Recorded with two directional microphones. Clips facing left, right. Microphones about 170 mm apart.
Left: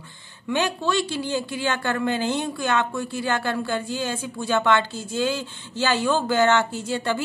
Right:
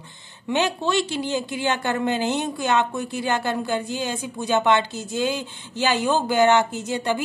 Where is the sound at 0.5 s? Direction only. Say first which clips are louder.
Right 1 dB; 20° right (ahead or behind).